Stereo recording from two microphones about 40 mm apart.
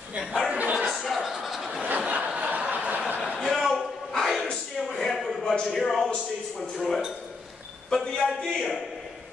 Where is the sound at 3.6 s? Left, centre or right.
Centre.